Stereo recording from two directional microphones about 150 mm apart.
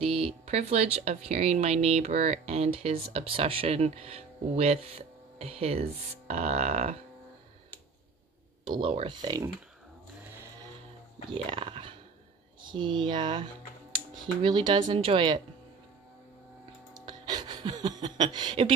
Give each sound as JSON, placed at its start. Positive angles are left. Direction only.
{"t": 0.0, "sound": "speech", "side_deg": -40}
{"t": 8.6, "sound": "speech", "side_deg": -30}
{"t": 11.2, "sound": "speech", "side_deg": -35}
{"t": 16.9, "sound": "a sound", "side_deg": -30}